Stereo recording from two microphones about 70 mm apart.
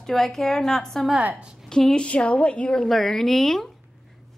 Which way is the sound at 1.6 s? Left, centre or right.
Centre.